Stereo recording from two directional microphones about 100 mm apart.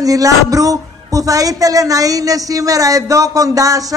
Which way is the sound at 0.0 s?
35° right (ahead or behind).